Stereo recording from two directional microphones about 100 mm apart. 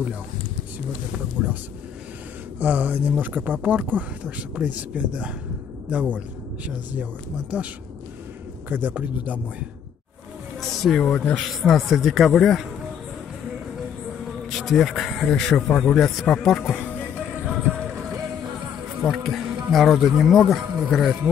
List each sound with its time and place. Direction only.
1.4 s speech: 10° right (ahead or behind)
2.6 s speech: 15° right (ahead or behind)
8.6 s speech: 20° right (ahead or behind)
10.6 s speech: 5° left (ahead or behind)
14.5 s speech: centre (ahead or behind)
16.7 s music: 5° right (ahead or behind)
19.0 s speech: centre (ahead or behind)